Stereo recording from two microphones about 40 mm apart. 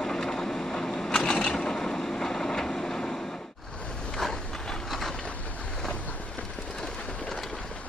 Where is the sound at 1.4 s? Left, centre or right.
Centre.